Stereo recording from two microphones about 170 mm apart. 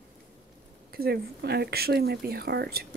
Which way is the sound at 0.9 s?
65° right (ahead or behind).